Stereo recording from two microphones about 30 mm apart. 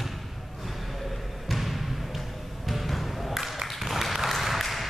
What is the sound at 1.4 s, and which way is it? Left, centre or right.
Basketball bounce, centre.